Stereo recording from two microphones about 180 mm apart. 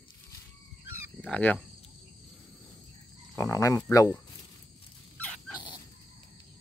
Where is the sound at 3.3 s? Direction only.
15° left (ahead or behind).